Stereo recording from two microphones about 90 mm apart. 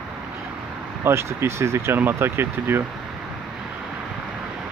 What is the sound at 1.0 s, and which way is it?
Speech, 30° right (ahead or behind).